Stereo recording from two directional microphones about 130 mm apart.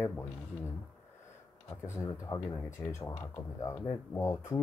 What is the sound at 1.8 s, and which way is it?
Speech, 20° left (ahead or behind).